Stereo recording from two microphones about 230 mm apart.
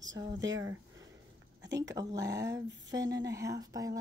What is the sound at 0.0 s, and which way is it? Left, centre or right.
Speech, right.